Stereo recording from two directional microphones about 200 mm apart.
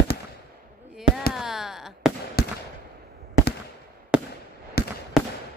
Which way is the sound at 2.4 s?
50° left (ahead or behind).